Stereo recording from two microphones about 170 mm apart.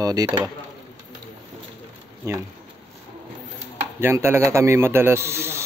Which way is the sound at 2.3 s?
20° right (ahead or behind).